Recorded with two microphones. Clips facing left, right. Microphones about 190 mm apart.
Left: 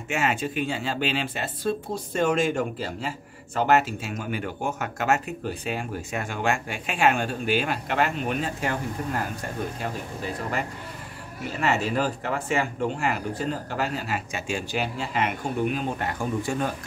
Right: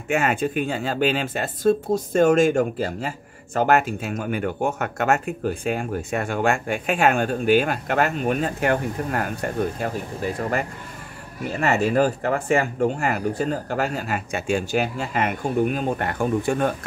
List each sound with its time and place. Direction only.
0.1 s speech: 55° right (ahead or behind)
8.5 s speech: 65° right (ahead or behind)
11.6 s speech: 50° right (ahead or behind)